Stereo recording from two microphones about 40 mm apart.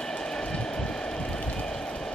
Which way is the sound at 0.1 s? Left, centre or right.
Left.